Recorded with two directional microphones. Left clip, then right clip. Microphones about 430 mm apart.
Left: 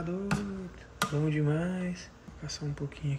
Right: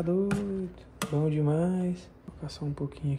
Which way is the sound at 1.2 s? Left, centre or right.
Centre.